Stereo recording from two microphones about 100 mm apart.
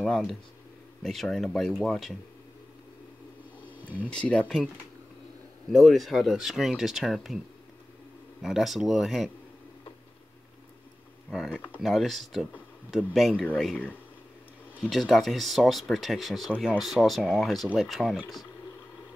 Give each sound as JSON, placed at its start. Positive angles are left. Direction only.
{"t": 0.0, "sound": "speech", "side_deg": 0}
{"t": 3.7, "sound": "a sound", "side_deg": -20}
{"t": 4.1, "sound": "speech", "side_deg": 10}
{"t": 5.7, "sound": "speech", "side_deg": 0}
{"t": 8.4, "sound": "speech", "side_deg": -5}
{"t": 11.2, "sound": "speech", "side_deg": 0}
{"t": 14.8, "sound": "speech", "side_deg": 0}